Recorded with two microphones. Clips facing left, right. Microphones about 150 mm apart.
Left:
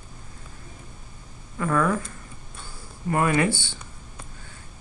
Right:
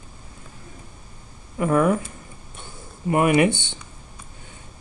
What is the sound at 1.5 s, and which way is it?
Speech, 20° right (ahead or behind).